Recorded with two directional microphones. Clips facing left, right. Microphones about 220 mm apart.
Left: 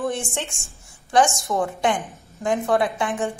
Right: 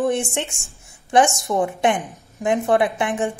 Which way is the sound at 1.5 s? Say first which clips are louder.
Right 3 dB; 15° right (ahead or behind).